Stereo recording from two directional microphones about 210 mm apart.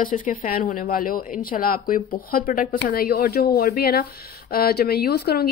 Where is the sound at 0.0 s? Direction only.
40° left (ahead or behind).